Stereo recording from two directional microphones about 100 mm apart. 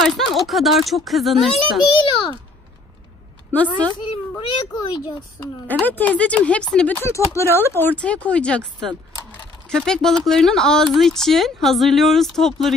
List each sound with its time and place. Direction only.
0.0 s speech: centre (ahead or behind)
1.8 s a child's voice: 50° left (ahead or behind)
3.5 s speech: 15° left (ahead or behind)
4.0 s a child's voice: 50° left (ahead or behind)
5.4 s speech: 15° left (ahead or behind)
7.3 s speech: 25° left (ahead or behind)
8.0 s speech: 15° left (ahead or behind)